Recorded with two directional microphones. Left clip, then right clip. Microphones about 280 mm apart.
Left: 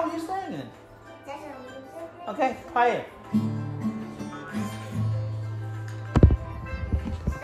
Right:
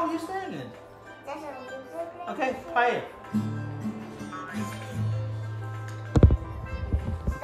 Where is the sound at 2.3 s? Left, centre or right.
Centre.